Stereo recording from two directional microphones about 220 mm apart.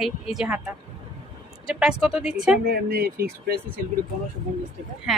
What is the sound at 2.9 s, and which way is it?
Speech, 45° right (ahead or behind).